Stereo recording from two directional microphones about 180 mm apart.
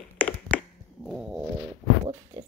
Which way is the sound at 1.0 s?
5° right (ahead or behind).